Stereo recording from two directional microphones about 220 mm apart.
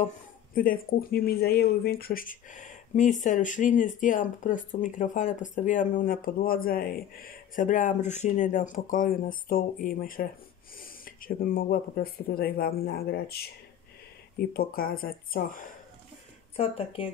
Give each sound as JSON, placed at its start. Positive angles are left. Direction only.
{"t": 0.6, "sound": "speech", "side_deg": 40}
{"t": 14.5, "sound": "speech", "side_deg": 40}
{"t": 16.5, "sound": "speech", "side_deg": 25}